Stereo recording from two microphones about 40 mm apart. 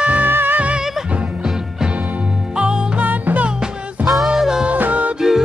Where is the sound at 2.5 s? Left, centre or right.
Right.